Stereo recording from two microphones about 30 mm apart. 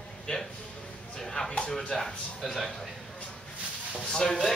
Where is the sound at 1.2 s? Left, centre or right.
Centre.